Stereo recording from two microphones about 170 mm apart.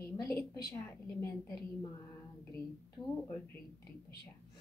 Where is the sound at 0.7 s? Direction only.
10° left (ahead or behind).